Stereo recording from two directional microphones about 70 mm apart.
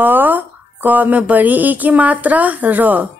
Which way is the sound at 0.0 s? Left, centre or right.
Right.